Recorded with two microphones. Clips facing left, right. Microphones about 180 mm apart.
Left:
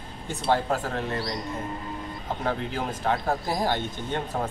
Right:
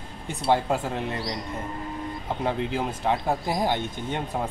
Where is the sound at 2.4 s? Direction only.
20° right (ahead or behind).